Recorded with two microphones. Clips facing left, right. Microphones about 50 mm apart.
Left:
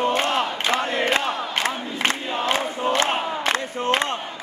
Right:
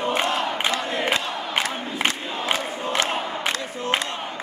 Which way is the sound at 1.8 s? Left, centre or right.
Centre.